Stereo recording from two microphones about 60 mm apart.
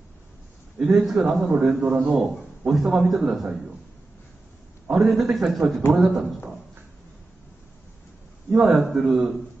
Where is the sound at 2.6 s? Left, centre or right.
Centre.